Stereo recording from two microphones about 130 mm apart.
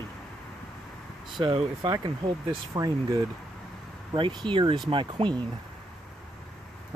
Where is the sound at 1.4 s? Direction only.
40° right (ahead or behind).